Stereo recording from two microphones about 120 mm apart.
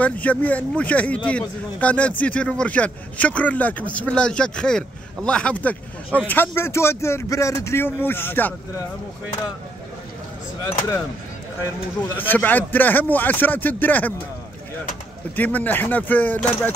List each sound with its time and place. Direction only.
0.0 s a man's voice: 10° left (ahead or behind)
12.2 s a man's voice: 15° left (ahead or behind)
15.3 s a man's voice: 15° left (ahead or behind)